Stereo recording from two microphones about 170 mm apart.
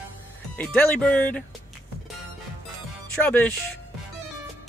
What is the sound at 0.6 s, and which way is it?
Speech, 10° left (ahead or behind).